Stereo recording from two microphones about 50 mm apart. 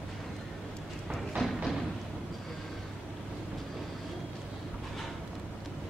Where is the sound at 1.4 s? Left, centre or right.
Centre.